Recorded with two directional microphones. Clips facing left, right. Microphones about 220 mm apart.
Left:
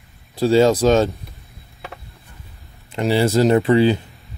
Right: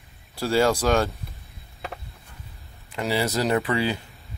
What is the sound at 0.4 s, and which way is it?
Speech, 20° left (ahead or behind).